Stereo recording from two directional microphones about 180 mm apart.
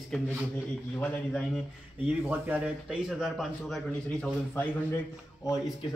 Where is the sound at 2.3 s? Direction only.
5° right (ahead or behind).